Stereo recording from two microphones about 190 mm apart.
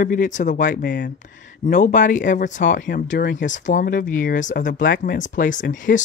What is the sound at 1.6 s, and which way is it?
Speech, 45° left (ahead or behind).